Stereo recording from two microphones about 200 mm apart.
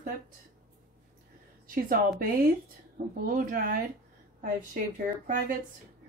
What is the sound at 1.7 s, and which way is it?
Speech, 45° right (ahead or behind).